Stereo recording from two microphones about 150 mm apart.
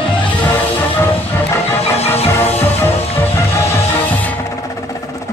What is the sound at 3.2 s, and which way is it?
Music, 10° left (ahead or behind).